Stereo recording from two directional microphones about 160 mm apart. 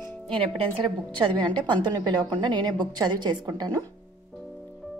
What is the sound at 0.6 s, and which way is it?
A woman's voice, 35° right (ahead or behind).